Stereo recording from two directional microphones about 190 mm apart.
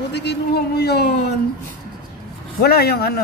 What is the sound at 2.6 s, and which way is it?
Speech, 55° left (ahead or behind).